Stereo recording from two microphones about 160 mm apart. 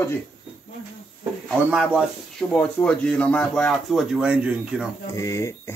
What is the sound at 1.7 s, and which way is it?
Speech, 5° right (ahead or behind).